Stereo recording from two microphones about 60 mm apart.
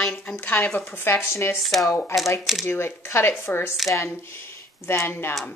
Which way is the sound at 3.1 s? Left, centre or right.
Left.